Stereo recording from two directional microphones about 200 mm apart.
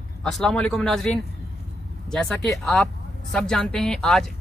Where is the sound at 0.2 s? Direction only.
Centre (ahead or behind).